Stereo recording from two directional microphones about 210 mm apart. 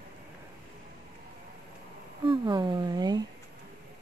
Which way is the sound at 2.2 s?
20° right (ahead or behind).